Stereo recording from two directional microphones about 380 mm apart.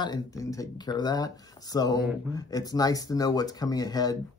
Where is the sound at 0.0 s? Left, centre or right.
Centre.